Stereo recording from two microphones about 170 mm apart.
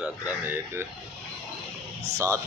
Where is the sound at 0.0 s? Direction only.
10° right (ahead or behind).